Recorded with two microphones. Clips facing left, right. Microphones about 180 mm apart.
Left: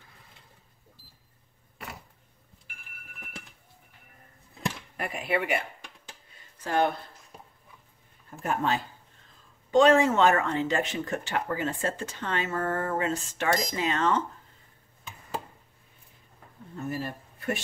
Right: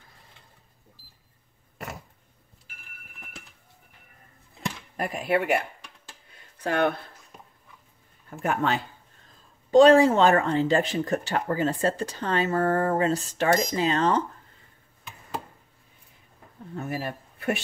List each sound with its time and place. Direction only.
4.9 s speech: 45° right (ahead or behind)
6.6 s speech: 65° right (ahead or behind)
8.4 s speech: 70° right (ahead or behind)
9.7 s speech: 35° right (ahead or behind)
16.7 s speech: 65° right (ahead or behind)